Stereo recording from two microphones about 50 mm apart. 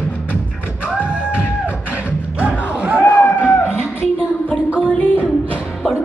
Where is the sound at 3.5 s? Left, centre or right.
Left.